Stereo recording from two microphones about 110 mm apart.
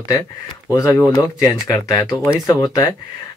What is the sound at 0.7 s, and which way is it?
A man's voice, 25° left (ahead or behind).